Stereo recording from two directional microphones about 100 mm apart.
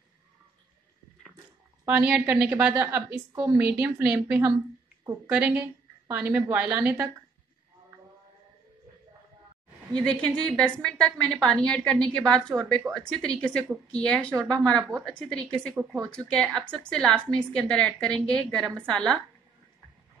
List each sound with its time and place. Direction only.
1.9 s a woman's voice: 20° right (ahead or behind)
9.9 s a woman's voice: 10° left (ahead or behind)
15.7 s a woman's voice: 20° right (ahead or behind)
16.1 s a woman's voice: 10° left (ahead or behind)